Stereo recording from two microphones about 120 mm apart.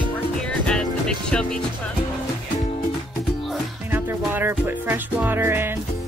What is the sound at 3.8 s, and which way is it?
Music, 15° right (ahead or behind).